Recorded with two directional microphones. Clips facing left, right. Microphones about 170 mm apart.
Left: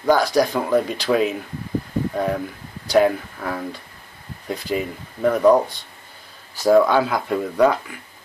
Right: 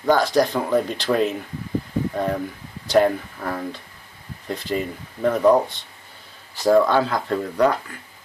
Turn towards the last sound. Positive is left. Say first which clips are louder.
# left 2 dB
turn(degrees=10)  # may be behind; listen again after turning